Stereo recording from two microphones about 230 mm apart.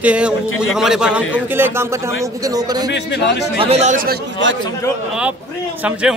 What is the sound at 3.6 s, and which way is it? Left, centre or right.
Speech, right.